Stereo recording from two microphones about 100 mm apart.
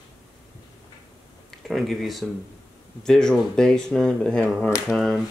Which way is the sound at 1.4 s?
Centre (ahead or behind).